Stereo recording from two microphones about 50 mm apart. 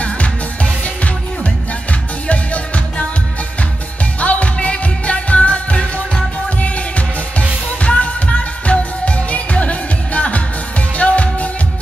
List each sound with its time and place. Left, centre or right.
0.0 s music: left
4.2 s music: left